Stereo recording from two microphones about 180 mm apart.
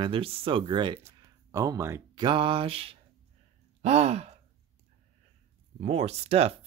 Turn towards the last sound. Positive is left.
turn(degrees=-35)  # may be behind; listen again after turning